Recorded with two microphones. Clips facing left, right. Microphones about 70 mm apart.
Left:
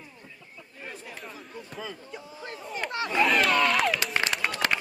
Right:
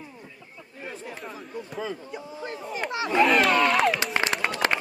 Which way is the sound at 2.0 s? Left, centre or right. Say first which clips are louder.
Right 5 dB; centre.